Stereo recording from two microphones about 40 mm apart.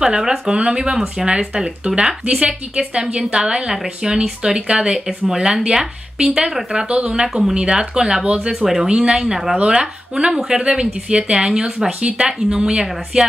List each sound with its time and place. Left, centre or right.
0.0 s speech: centre
8.8 s speech: right
9.6 s speech: right